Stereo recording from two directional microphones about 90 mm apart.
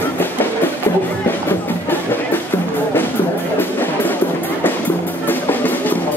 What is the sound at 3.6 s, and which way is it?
Music, 20° left (ahead or behind).